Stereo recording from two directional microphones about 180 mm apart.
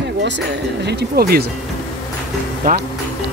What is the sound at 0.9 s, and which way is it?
Speech, 60° right (ahead or behind).